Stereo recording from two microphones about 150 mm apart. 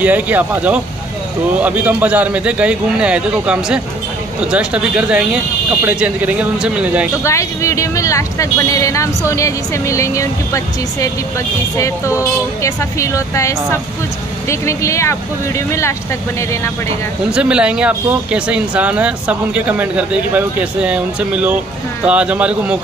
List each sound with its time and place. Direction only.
0.0 s speech: 10° right (ahead or behind)
7.2 s speech: 20° left (ahead or behind)
17.3 s speech: 5° right (ahead or behind)